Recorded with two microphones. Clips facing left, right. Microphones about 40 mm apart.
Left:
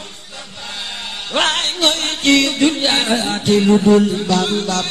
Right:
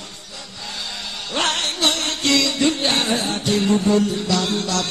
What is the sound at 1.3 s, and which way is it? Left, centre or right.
Music, left.